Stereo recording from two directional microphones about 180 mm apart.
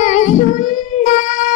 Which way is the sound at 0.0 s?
45° left (ahead or behind).